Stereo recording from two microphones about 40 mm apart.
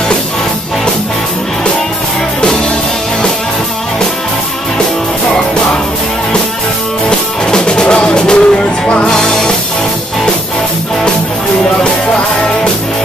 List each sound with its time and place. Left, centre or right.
7.1 s music: left